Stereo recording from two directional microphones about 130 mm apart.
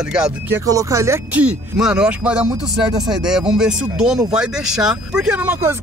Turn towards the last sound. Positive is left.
turn(degrees=-20)  # may be behind; listen again after turning